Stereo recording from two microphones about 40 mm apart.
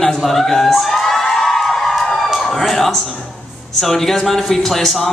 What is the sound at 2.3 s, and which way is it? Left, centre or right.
A man's voice, centre.